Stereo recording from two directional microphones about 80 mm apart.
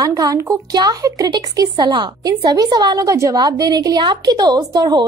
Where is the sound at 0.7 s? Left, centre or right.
Right.